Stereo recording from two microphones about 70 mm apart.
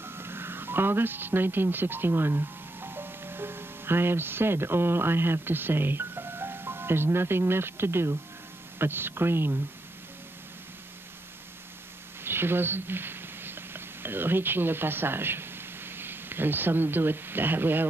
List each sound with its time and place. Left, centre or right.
0.0 s a woman's voice: right
12.3 s speech: right